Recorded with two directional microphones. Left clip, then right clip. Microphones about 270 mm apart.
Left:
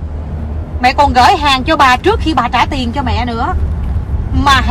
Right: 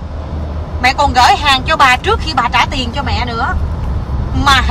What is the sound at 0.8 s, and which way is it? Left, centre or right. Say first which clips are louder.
Speech: left 1 dB; centre.